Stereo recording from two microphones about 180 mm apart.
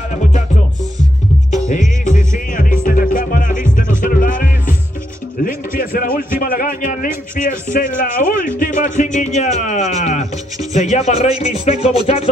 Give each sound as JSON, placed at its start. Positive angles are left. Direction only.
{"t": 1.7, "sound": "music", "side_deg": 45}
{"t": 5.4, "sound": "a man's voice", "side_deg": 50}